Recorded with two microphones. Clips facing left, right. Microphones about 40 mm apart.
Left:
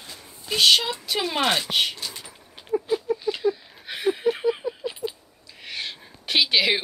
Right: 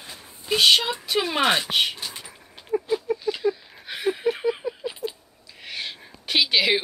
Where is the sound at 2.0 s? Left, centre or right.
Right.